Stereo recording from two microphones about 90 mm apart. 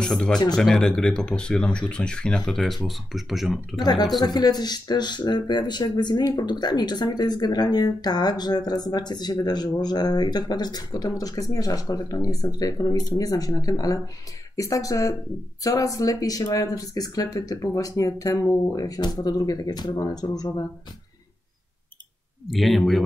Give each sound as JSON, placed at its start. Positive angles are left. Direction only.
{"t": 0.0, "sound": "speech", "side_deg": 5}
{"t": 3.8, "sound": "speech", "side_deg": 50}
{"t": 22.5, "sound": "speech", "side_deg": 0}